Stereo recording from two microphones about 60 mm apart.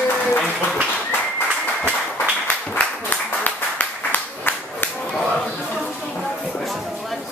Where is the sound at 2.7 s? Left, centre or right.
Left.